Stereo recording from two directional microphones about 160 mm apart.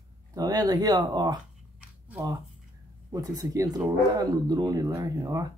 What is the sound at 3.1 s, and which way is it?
Speech, 25° right (ahead or behind).